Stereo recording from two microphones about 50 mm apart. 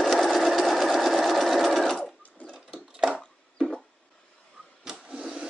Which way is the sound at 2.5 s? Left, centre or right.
Centre.